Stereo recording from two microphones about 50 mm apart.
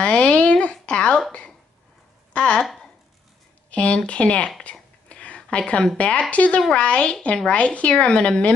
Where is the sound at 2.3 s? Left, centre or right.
Left.